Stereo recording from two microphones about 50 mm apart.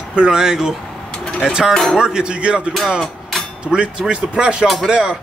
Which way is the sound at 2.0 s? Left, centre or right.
Centre.